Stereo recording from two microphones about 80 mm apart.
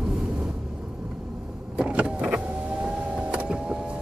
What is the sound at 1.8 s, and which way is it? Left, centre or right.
Power windows, centre.